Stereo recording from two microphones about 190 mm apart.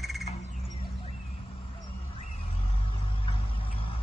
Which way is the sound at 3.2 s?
30° left (ahead or behind).